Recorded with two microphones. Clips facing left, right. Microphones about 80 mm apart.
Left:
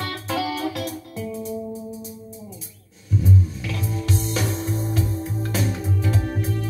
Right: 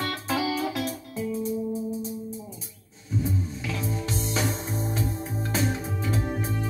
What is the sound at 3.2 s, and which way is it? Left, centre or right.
Music, right.